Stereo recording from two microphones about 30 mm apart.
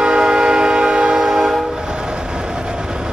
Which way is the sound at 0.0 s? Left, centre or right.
Right.